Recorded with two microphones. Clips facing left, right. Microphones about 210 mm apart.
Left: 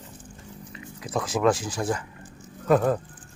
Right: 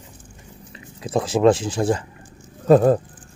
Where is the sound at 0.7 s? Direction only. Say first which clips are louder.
Right 6 dB; 30° right (ahead or behind).